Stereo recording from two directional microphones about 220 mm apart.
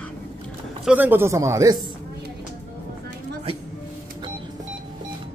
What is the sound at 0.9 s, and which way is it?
Speech, 10° right (ahead or behind).